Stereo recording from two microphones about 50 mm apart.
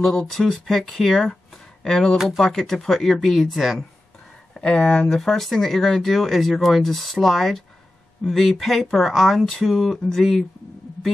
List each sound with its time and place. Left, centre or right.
0.0 s speech: centre
4.7 s speech: centre
5.0 s speech: centre